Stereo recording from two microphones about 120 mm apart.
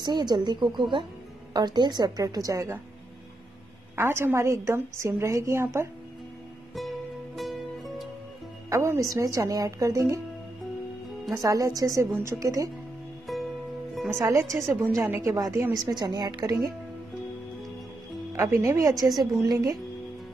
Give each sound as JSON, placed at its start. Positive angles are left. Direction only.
{"t": 0.0, "sound": "a woman's voice", "side_deg": -35}
{"t": 3.9, "sound": "a woman's voice", "side_deg": -20}
{"t": 7.3, "sound": "music", "side_deg": 0}
{"t": 8.6, "sound": "a woman's voice", "side_deg": -25}
{"t": 11.3, "sound": "a woman's voice", "side_deg": -30}
{"t": 13.3, "sound": "music", "side_deg": 0}
{"t": 14.1, "sound": "a woman's voice", "side_deg": -30}
{"t": 18.3, "sound": "a woman's voice", "side_deg": -25}